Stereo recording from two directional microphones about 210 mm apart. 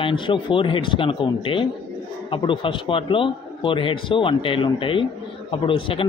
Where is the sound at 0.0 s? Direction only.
25° left (ahead or behind).